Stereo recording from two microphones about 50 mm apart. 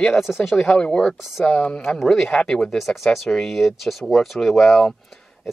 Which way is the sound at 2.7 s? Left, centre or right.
Centre.